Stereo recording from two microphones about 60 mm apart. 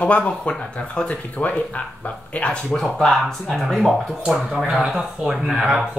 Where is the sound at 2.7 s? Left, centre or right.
Centre.